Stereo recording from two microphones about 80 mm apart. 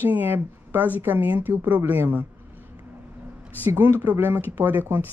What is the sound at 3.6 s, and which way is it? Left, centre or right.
A woman's voice, right.